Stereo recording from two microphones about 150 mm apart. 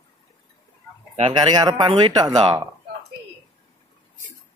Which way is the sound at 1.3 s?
30° right (ahead or behind).